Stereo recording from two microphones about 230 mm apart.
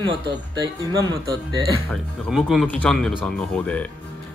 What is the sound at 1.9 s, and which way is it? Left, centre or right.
Speech, centre.